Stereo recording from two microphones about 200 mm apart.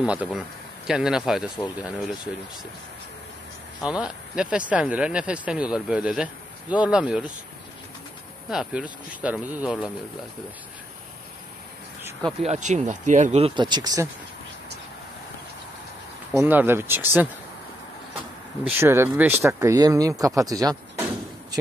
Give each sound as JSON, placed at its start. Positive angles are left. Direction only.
{"t": 0.0, "sound": "speech", "side_deg": -5}
{"t": 3.8, "sound": "speech", "side_deg": -5}
{"t": 8.5, "sound": "speech", "side_deg": 0}
{"t": 12.4, "sound": "speech", "side_deg": -35}
{"t": 16.3, "sound": "speech", "side_deg": -10}
{"t": 18.8, "sound": "speech", "side_deg": -10}